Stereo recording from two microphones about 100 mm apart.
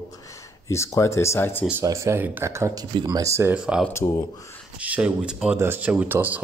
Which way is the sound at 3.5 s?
10° right (ahead or behind).